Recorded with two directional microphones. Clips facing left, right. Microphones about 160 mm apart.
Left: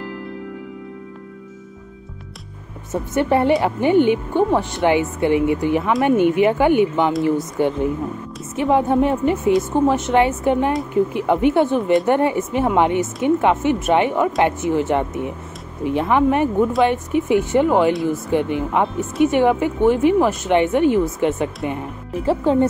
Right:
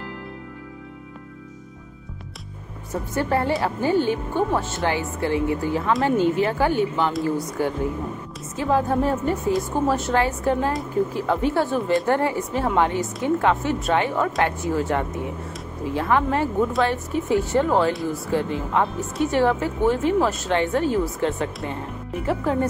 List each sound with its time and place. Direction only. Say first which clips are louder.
2.9 s a woman's voice: left 5 dB; 25° left (ahead or behind)
6.1 s speech: left 4 dB; 65° left (ahead or behind)
6.4 s a woman's voice: left 6 dB; 20° left (ahead or behind)